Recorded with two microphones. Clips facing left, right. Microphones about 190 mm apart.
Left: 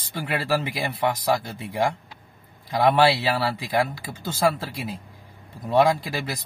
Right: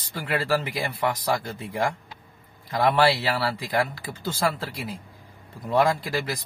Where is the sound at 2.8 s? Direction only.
15° left (ahead or behind).